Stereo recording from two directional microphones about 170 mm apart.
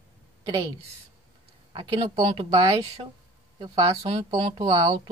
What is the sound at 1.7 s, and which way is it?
Speech, 30° right (ahead or behind).